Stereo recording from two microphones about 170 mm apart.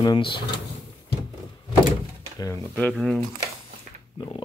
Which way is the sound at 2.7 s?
5° left (ahead or behind).